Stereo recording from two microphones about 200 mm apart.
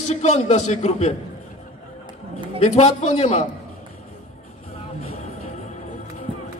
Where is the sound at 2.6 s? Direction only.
35° left (ahead or behind).